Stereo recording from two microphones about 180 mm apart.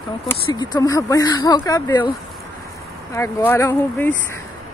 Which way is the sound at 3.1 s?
15° left (ahead or behind).